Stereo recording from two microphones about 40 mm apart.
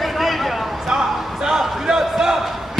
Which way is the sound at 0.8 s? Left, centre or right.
Centre.